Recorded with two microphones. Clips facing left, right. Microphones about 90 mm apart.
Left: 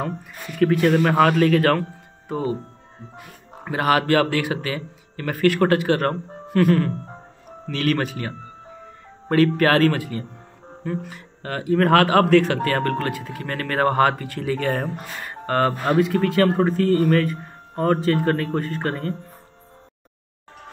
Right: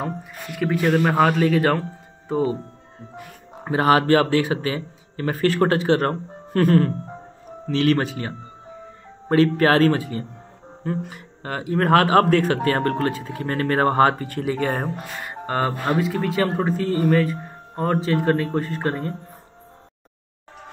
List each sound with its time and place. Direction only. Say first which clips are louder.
0.6 s speech: left 2 dB; 10° right (ahead or behind)
3.6 s speech: right 2 dB; 25° right (ahead or behind)
11.4 s speech: left 2 dB; 20° right (ahead or behind)
15.8 s speech: left 3 dB; centre (ahead or behind)